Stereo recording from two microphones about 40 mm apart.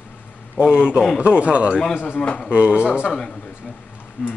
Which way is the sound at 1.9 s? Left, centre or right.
Left.